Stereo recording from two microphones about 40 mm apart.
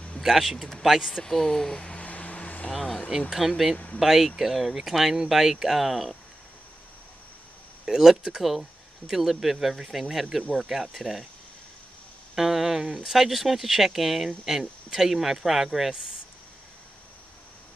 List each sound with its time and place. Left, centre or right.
0.2 s speech: centre
1.2 s speech: centre
1.8 s a sound: left
2.0 s vehicle: left
2.7 s speech: centre
3.1 s speech: centre
3.7 s speech: left
4.0 s speech: centre
7.8 s speech: centre
12.4 s speech: centre